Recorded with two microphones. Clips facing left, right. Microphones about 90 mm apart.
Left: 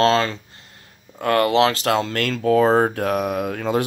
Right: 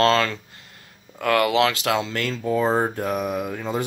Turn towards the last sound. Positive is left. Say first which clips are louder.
# left 4 dB
turn(degrees=65)  # may be behind; listen again after turning